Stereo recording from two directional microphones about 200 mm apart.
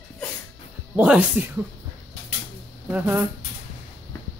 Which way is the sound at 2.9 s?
10° right (ahead or behind).